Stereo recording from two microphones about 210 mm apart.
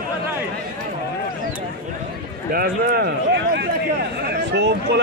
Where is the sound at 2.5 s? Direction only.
45° right (ahead or behind).